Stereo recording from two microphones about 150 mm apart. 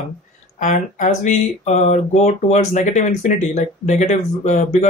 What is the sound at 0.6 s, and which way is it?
Speech, 55° left (ahead or behind).